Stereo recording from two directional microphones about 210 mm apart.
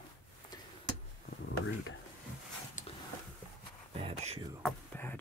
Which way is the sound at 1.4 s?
60° left (ahead or behind).